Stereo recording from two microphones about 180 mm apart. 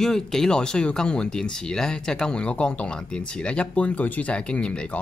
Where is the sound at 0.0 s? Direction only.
5° left (ahead or behind).